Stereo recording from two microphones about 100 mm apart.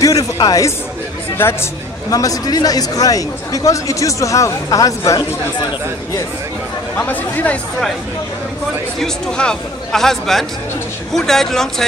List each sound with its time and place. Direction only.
0.0 s a sound: 35° left (ahead or behind)
1.4 s speech: 25° left (ahead or behind)
2.1 s a man's voice: 40° left (ahead or behind)
7.0 s speech: 15° left (ahead or behind)
9.0 s a man's voice: 5° left (ahead or behind)